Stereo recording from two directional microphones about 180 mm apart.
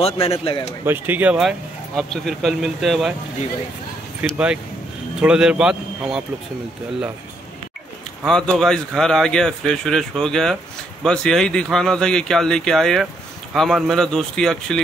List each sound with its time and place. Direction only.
0.0 s a man's voice: 35° left (ahead or behind)
0.8 s speech: 10° right (ahead or behind)
4.2 s speech: 5° right (ahead or behind)
8.3 s speech: 5° left (ahead or behind)